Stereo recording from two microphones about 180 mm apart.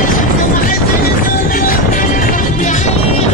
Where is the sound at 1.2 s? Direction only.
50° left (ahead or behind).